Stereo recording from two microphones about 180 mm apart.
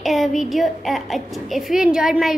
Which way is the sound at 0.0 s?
Centre (ahead or behind).